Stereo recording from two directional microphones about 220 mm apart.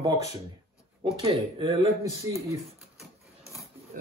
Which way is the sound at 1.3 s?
20° right (ahead or behind).